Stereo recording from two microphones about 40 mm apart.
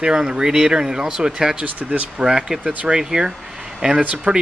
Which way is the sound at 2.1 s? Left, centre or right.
Centre.